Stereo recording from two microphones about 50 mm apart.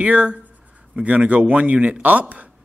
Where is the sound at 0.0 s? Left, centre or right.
Right.